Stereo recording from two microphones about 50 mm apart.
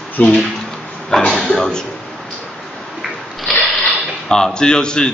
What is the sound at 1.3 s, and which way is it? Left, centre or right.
Speech, centre.